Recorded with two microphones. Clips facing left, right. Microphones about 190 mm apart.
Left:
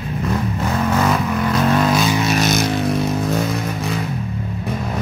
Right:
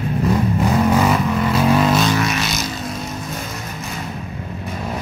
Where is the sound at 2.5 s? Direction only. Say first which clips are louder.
Left 7 dB; 55° left (ahead or behind).